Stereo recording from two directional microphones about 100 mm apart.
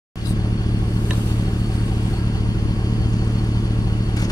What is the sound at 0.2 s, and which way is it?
Vehicle, 40° left (ahead or behind).